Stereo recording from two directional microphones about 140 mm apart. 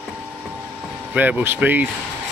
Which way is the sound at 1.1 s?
10° right (ahead or behind).